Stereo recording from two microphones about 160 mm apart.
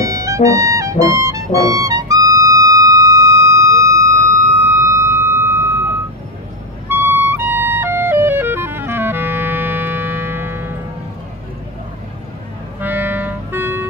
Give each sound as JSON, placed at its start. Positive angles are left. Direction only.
{"t": 0.0, "sound": "music", "side_deg": -20}
{"t": 4.6, "sound": "a sound", "side_deg": -15}
{"t": 6.9, "sound": "music", "side_deg": -15}
{"t": 12.8, "sound": "clarinet", "side_deg": -10}